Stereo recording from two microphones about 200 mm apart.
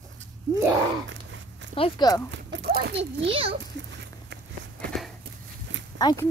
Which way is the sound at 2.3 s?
60° right (ahead or behind).